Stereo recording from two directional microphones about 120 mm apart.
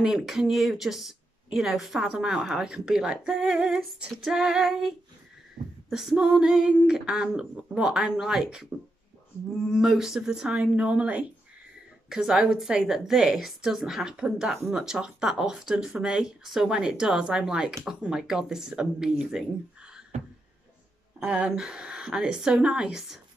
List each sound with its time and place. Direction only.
0.0 s speech: 5° right (ahead or behind)
20.1 s a sound: 65° right (ahead or behind)
21.2 s speech: 10° right (ahead or behind)